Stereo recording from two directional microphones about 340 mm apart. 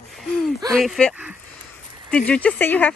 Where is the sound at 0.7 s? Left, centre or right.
Centre.